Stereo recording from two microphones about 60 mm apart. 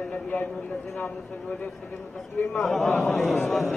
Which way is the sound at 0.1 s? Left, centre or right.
Left.